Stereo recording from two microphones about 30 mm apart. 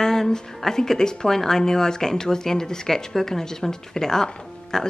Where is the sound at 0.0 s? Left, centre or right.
Centre.